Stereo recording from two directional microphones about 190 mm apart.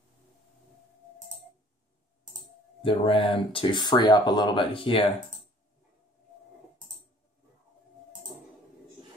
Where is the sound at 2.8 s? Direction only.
30° left (ahead or behind).